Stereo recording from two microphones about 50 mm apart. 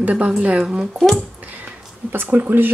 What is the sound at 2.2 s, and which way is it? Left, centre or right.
Speech, right.